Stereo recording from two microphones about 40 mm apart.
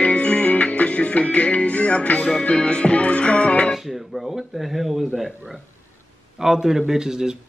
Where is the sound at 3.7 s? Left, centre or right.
Centre.